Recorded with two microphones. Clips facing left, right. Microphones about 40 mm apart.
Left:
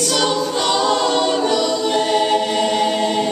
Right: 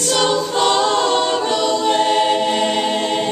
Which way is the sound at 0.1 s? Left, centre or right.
Right.